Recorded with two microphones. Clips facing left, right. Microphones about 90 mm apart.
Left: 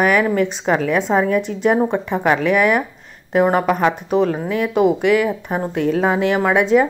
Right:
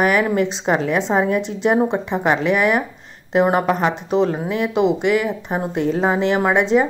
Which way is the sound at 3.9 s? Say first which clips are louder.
Left 1 dB; 50° left (ahead or behind).